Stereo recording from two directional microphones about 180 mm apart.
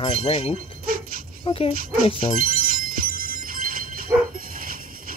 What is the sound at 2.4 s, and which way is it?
Music, 50° right (ahead or behind).